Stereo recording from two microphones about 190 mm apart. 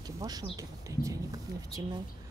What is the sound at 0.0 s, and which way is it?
Speech, 20° right (ahead or behind).